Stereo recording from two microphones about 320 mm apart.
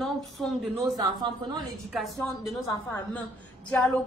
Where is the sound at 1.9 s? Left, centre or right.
Centre.